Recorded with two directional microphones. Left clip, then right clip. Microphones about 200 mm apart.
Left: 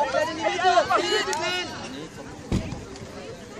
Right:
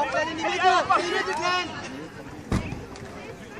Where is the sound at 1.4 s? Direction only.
40° right (ahead or behind).